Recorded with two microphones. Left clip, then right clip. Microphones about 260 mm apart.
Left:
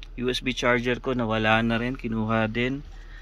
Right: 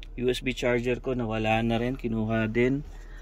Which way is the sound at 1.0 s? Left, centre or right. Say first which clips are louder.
Left 3 dB; left.